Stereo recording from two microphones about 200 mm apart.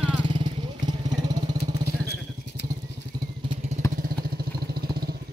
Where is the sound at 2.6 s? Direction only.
60° left (ahead or behind).